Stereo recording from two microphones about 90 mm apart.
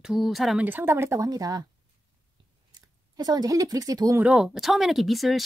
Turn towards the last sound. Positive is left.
turn(degrees=0)  # may be behind; listen again after turning